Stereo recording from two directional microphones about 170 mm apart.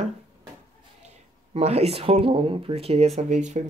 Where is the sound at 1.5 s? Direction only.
35° right (ahead or behind).